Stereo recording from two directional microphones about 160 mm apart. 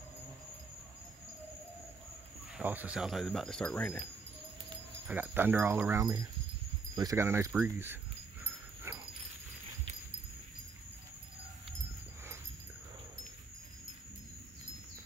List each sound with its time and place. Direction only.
2.5 s speech: 10° right (ahead or behind); by 4.0 s 5° left (ahead or behind)
5.0 s speech: 10° right (ahead or behind)